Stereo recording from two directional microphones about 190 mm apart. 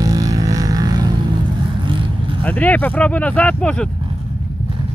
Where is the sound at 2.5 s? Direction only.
10° left (ahead or behind).